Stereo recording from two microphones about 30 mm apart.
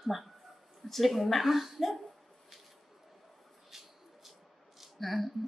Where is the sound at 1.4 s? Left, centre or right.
Centre.